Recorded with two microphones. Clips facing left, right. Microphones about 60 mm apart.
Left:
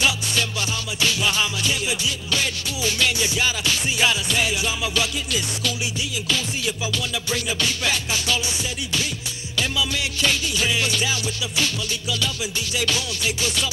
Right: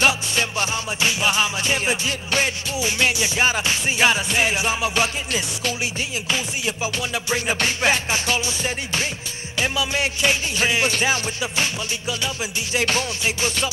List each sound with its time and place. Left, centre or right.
0.0 s music: right
1.7 s music: right
2.8 s music: right